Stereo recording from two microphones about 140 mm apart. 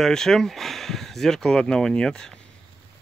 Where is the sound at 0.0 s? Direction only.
5° left (ahead or behind).